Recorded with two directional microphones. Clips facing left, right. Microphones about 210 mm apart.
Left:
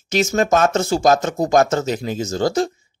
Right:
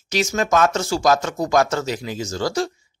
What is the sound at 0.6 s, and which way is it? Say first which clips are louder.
Speech: right 2 dB; 25° left (ahead or behind).